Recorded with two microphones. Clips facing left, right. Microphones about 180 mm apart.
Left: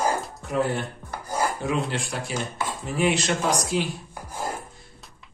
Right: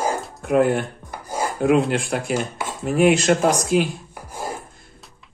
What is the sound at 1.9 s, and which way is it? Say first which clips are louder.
Speech: right 8 dB; 55° right (ahead or behind).